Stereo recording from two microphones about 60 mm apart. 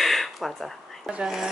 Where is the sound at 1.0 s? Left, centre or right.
Centre.